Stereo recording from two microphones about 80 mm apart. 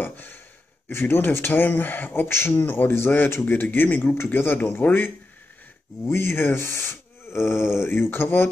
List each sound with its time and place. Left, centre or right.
0.0 s sigh: left
0.8 s speech: left